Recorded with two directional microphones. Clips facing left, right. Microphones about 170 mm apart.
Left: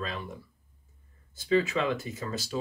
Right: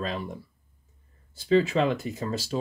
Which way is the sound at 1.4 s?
35° right (ahead or behind).